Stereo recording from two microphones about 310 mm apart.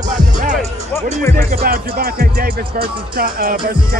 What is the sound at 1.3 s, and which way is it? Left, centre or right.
Speech, right.